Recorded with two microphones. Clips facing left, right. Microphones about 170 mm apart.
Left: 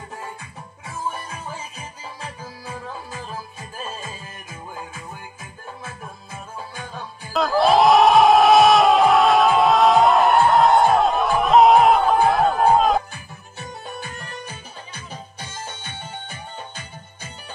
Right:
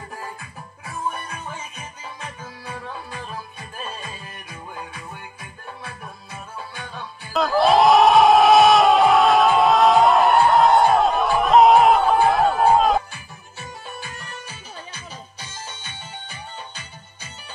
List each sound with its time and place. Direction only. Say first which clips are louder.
1.0 s music: right 1 dB; 30° left (ahead or behind)
7.3 s crowd: even; centre (ahead or behind)
13.9 s music: left 2 dB; 55° left (ahead or behind)